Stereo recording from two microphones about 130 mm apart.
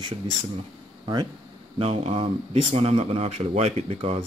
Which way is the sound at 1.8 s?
50° right (ahead or behind).